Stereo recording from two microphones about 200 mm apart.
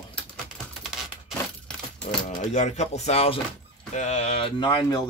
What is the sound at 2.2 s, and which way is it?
Speech, 35° left (ahead or behind).